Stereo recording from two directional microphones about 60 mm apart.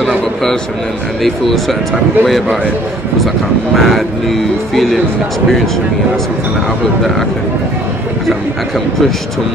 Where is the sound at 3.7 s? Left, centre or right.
Centre.